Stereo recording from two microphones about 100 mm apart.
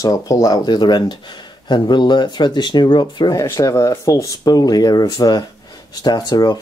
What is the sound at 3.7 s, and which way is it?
Speech, 30° left (ahead or behind).